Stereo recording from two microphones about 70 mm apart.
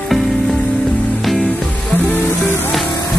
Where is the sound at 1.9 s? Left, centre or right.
Left.